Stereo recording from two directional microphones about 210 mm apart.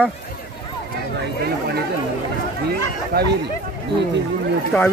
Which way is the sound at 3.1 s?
50° right (ahead or behind).